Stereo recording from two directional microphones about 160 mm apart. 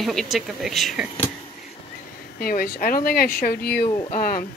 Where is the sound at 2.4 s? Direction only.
70° left (ahead or behind).